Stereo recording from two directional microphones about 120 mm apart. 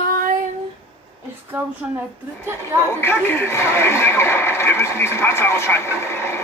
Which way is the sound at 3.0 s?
20° left (ahead or behind).